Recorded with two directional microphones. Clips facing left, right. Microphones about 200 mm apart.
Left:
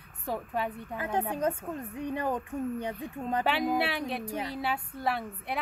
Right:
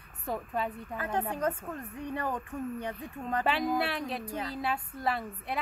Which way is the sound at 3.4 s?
5° left (ahead or behind).